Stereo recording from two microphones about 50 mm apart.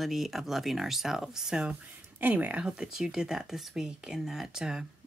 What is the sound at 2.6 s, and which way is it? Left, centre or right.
Speech, centre.